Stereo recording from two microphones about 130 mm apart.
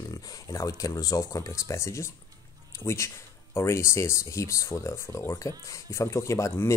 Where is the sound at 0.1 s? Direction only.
25° left (ahead or behind).